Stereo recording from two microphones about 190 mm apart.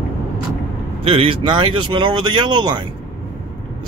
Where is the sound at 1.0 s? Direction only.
30° right (ahead or behind).